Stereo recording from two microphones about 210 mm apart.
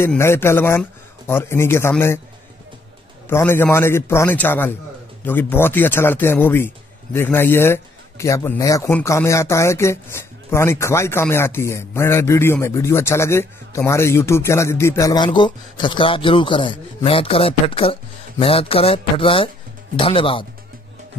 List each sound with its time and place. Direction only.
0.0 s a man's voice: 10° left (ahead or behind)
3.3 s a man's voice: 10° left (ahead or behind)